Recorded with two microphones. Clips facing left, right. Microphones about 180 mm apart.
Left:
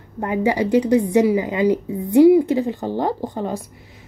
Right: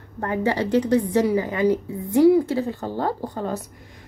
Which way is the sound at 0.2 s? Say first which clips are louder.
Left 3 dB; 15° left (ahead or behind).